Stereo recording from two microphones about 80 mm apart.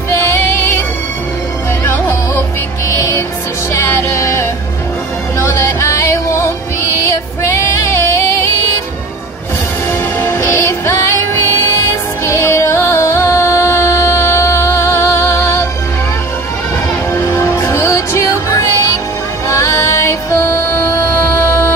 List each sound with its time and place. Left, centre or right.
0.2 s music: left
1.9 s music: left
7.8 s music: left
10.2 s music: left
17.1 s music: left